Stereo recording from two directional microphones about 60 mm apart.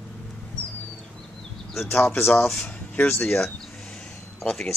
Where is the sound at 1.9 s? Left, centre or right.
Left.